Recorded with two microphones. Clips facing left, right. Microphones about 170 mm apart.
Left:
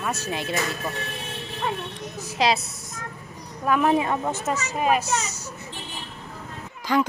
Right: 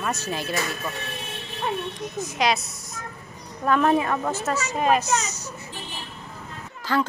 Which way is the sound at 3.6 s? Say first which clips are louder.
Right 1 dB; 10° left (ahead or behind).